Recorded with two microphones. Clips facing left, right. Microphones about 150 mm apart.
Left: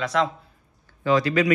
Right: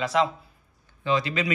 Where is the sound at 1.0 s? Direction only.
25° right (ahead or behind).